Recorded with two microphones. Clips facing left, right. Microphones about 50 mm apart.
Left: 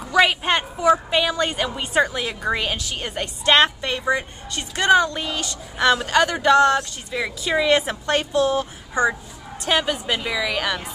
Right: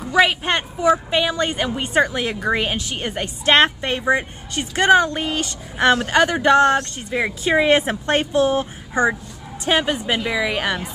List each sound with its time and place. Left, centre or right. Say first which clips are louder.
0.1 s a woman's voice: right 1 dB; centre
2.1 s a woman's voice: right 3 dB; centre